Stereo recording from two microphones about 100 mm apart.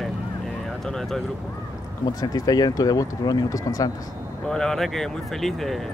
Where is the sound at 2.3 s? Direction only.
40° left (ahead or behind).